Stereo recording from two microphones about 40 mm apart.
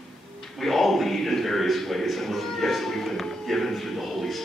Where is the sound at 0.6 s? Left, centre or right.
Centre.